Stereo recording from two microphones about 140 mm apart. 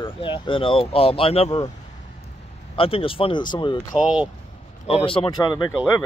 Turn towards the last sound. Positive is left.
turn(degrees=30)  # may be behind; listen again after turning